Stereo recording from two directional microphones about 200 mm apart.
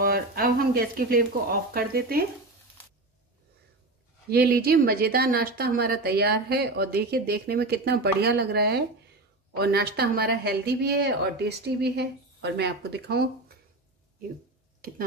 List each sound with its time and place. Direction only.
0.0 s speech: 50° right (ahead or behind)
4.3 s speech: 50° right (ahead or behind)